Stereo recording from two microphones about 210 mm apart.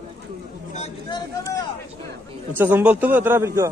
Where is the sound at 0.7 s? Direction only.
30° left (ahead or behind).